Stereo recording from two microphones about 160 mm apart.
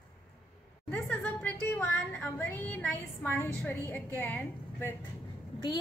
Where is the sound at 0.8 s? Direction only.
10° left (ahead or behind).